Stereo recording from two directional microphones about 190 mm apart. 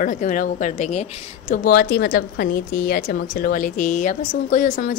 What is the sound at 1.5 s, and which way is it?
A woman's voice, 50° left (ahead or behind).